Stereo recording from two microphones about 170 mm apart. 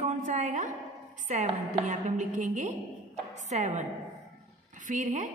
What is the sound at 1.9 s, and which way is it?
A woman's voice, 45° right (ahead or behind).